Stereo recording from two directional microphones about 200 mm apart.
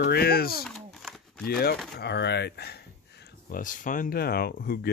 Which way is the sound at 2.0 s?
55° left (ahead or behind).